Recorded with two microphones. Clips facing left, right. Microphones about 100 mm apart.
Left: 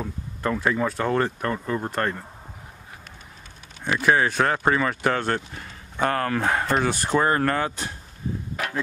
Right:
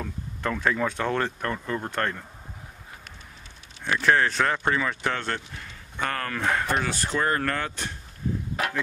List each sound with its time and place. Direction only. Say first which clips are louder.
0.4 s speech: left 2 dB; 5° left (ahead or behind)
3.8 s speech: left 1 dB; 10° left (ahead or behind)